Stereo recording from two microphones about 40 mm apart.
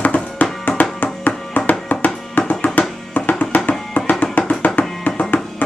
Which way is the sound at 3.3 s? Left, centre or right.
Left.